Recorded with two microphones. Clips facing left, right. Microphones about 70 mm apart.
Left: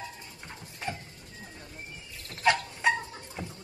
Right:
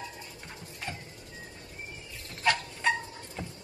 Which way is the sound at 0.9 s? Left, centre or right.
Left.